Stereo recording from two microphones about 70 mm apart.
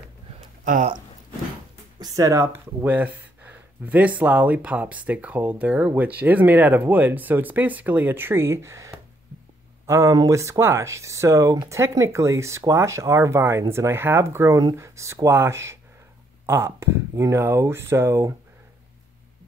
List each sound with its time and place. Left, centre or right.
2.0 s speech: right
2.8 s speech: right